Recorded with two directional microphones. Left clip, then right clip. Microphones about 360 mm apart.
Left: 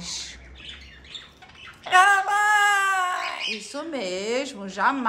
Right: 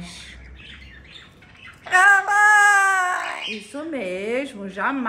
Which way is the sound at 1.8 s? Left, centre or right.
Centre.